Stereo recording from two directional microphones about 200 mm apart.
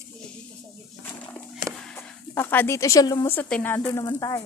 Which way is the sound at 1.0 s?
10° left (ahead or behind).